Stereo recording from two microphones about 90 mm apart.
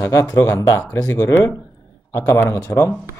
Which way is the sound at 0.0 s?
35° left (ahead or behind).